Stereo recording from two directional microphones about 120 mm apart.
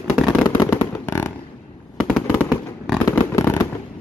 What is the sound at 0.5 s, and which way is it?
Fireworks, 25° left (ahead or behind).